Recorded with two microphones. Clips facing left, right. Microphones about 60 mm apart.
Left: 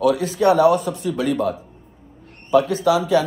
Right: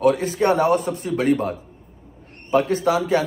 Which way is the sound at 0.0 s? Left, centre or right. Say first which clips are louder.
Left 1 dB; right.